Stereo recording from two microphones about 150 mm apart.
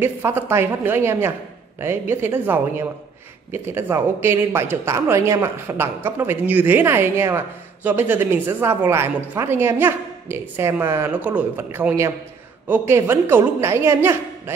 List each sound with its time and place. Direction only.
0.0 s speech: 15° right (ahead or behind)